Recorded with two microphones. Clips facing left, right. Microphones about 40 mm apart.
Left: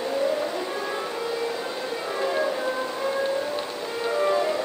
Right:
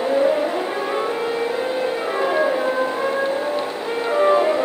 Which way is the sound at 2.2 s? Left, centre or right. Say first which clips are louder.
Right 5 dB; right.